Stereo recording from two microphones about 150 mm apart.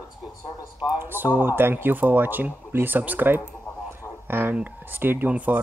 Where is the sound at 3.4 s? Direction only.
10° left (ahead or behind).